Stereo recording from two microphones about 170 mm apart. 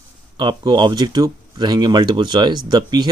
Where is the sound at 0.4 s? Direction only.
25° right (ahead or behind).